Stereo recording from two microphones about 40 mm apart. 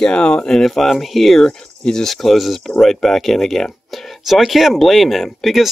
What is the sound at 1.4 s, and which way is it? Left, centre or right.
Speech, centre.